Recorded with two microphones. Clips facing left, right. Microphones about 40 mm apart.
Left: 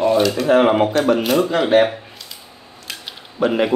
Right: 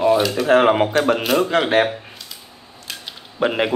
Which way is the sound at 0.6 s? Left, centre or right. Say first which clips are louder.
Left 1 dB; right.